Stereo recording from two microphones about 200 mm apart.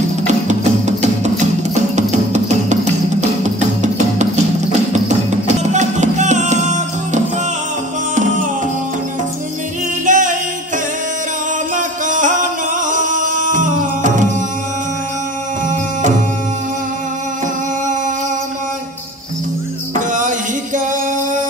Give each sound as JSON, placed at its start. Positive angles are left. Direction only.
{"t": 0.5, "sound": "music", "side_deg": -35}
{"t": 5.6, "sound": "music", "side_deg": -35}
{"t": 10.0, "sound": "music", "side_deg": -40}
{"t": 11.7, "sound": "music", "side_deg": -40}
{"t": 20.1, "sound": "music", "side_deg": -40}